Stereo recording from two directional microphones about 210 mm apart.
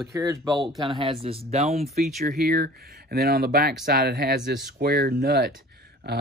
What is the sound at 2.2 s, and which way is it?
Speech, 45° right (ahead or behind).